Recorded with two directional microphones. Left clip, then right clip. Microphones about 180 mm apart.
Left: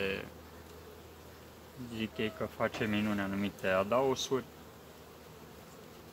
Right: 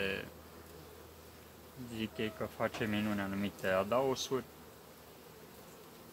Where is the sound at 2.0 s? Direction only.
15° right (ahead or behind).